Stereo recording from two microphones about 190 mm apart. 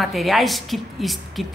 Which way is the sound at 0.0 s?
Centre (ahead or behind).